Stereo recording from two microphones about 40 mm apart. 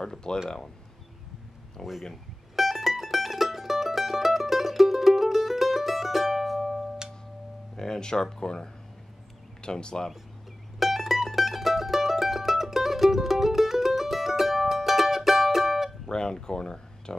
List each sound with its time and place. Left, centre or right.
0.0 s speech: centre
1.8 s speech: centre
2.5 s mandolin: centre
7.7 s speech: centre
10.8 s mandolin: centre
16.1 s a sound: centre